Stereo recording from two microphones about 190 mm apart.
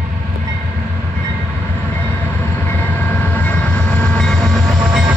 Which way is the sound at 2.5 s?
10° left (ahead or behind).